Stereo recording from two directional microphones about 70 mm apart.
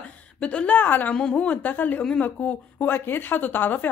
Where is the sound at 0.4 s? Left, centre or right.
Centre.